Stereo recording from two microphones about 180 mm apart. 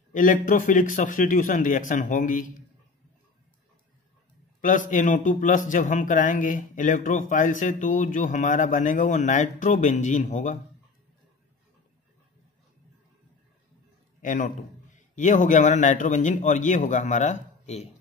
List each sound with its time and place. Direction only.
0.1 s a man's voice: 45° left (ahead or behind)
4.6 s a man's voice: 45° left (ahead or behind)
14.2 s a man's voice: 45° left (ahead or behind)